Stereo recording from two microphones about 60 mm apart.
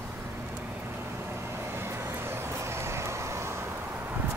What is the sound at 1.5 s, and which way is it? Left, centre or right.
Vehicle, right.